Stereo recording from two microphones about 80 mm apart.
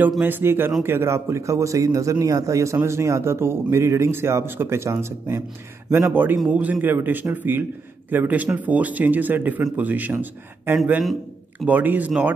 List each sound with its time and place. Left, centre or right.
0.2 s speech: right